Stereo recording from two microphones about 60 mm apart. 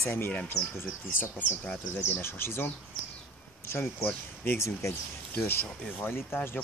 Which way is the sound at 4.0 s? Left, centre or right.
Left.